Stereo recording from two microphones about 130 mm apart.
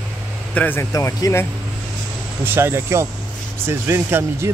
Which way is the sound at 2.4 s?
15° right (ahead or behind).